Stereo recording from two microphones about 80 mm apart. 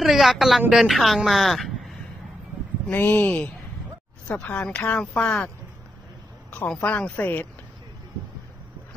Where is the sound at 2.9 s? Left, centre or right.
Left.